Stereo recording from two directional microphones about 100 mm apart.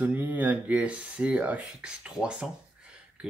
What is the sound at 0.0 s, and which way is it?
Speech, 20° right (ahead or behind).